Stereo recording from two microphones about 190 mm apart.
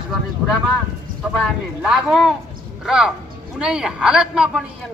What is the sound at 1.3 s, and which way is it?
Speech, centre (ahead or behind).